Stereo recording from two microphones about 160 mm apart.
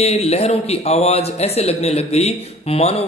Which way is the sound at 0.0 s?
40° left (ahead or behind).